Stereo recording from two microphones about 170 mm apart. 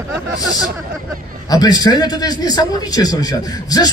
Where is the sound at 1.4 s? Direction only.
20° left (ahead or behind).